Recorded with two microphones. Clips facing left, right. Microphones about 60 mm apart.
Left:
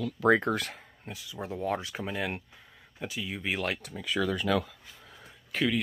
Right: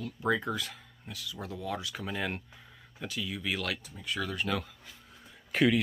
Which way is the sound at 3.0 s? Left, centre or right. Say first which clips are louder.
Left 1 dB; left.